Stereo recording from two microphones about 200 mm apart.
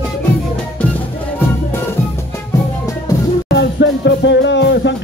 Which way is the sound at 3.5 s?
60° left (ahead or behind).